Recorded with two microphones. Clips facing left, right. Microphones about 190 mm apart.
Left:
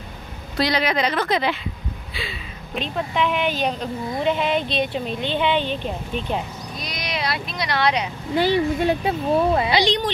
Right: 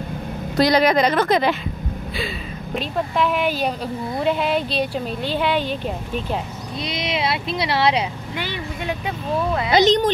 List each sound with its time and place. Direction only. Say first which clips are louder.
0.6 s a woman's voice: right 5 dB; 45° right (ahead or behind)
2.8 s a woman's voice: right 1 dB; 5° right (ahead or behind)
6.8 s speech: right 5 dB; 25° right (ahead or behind)
8.4 s speech: left 11 dB; 35° left (ahead or behind)
9.7 s a woman's voice: right 5 dB; 45° right (ahead or behind)